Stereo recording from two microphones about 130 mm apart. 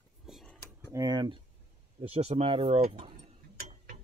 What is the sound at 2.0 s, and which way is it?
Speech, 55° right (ahead or behind).